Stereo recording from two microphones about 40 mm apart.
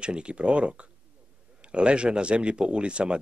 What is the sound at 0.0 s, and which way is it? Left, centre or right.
Speech, right.